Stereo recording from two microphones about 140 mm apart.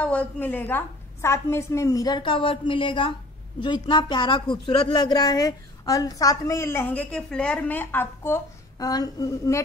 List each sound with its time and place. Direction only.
0.0 s speech: 10° left (ahead or behind); by 9.6 s 25° left (ahead or behind)